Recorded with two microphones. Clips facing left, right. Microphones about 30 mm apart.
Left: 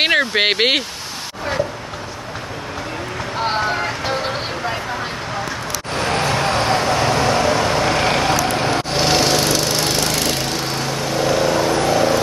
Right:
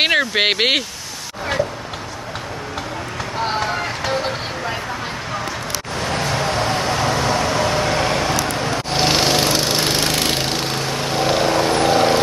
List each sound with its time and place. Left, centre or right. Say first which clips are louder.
0.0 s speech: left 1 dB; centre
5.9 s vehicle: left 3 dB; left
8.9 s lawn mower: right 1 dB; centre; by 10.6 s right
11.1 s vehicle: even; right